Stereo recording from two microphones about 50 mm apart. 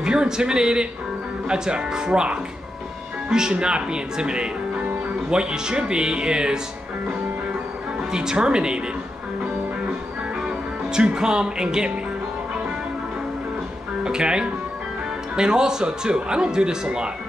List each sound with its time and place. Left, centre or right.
0.0 s speech: centre
8.0 s speech: centre
10.4 s speech: centre
14.0 s speech: centre